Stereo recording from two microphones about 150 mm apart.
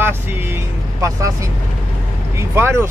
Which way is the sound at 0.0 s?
15° right (ahead or behind).